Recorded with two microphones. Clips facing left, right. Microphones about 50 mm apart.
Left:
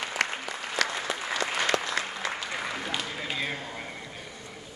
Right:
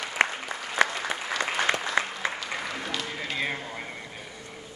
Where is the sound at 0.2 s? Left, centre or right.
Right.